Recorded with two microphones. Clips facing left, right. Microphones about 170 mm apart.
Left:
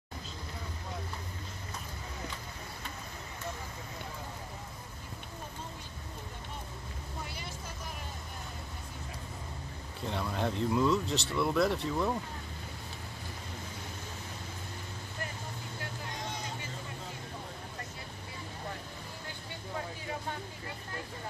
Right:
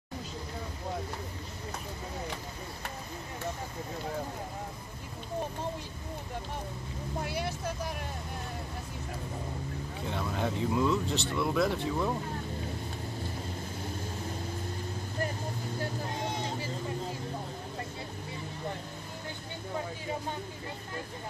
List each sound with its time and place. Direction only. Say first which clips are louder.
7.2 s vehicle: right 10 dB; 65° right (ahead or behind)
10.0 s speech: even; centre (ahead or behind)